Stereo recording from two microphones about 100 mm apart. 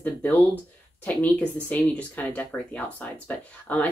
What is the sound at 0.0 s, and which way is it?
Speech, 15° left (ahead or behind).